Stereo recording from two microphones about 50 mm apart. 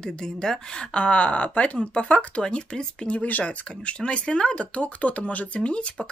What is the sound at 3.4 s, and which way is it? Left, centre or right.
Speech, left.